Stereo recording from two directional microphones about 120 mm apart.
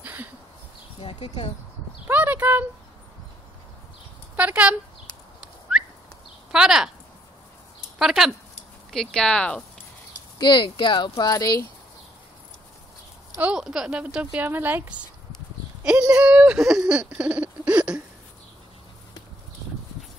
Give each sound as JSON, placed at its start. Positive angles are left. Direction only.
{"t": 0.0, "sound": "a sound", "side_deg": -15}
{"t": 2.0, "sound": "a sound", "side_deg": -15}
{"t": 4.4, "sound": "speech", "side_deg": -10}
{"t": 6.5, "sound": "speech", "side_deg": -5}
{"t": 8.0, "sound": "speech", "side_deg": -5}
{"t": 10.4, "sound": "speech", "side_deg": 40}
{"t": 13.4, "sound": "speech", "side_deg": -5}